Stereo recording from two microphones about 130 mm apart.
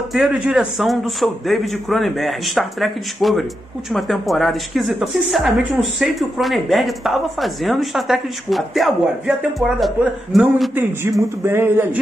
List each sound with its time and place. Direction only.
0.1 s a man's voice: 5° right (ahead or behind)
10.7 s a man's voice: 15° right (ahead or behind)